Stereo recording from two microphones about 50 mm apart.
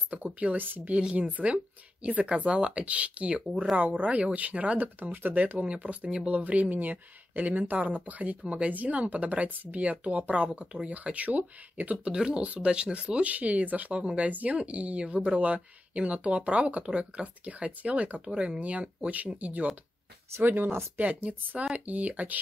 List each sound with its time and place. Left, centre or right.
0.1 s speech: right
5.4 s speech: right
12.1 s speech: centre
18.3 s speech: centre
18.6 s speech: right
20.4 s speech: right
21.0 s speech: right